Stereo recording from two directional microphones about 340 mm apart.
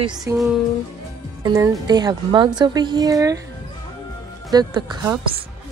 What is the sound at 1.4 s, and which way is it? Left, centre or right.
Speech, centre.